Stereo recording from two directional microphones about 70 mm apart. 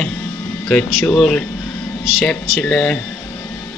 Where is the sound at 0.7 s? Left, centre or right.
Centre.